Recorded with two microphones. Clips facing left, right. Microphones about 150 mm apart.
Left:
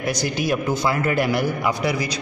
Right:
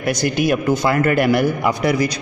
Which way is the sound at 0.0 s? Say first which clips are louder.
Right 5 dB; 60° right (ahead or behind).